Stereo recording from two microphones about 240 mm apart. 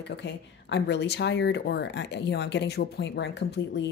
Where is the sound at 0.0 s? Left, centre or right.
Left.